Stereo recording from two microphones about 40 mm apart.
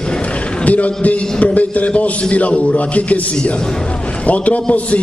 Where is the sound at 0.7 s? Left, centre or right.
Left.